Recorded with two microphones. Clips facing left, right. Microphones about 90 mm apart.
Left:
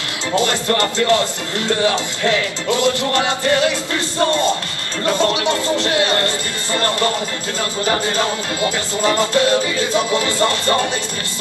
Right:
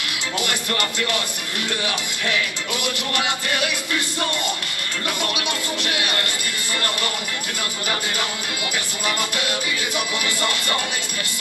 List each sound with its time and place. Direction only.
0.4 s music: 25° left (ahead or behind)